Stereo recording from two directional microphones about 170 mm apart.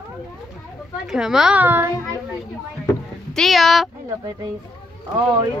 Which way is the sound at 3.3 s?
Centre (ahead or behind).